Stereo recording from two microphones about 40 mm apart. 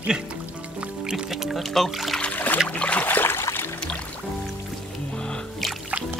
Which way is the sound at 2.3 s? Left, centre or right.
Left.